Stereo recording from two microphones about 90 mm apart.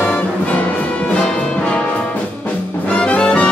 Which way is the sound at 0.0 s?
20° left (ahead or behind).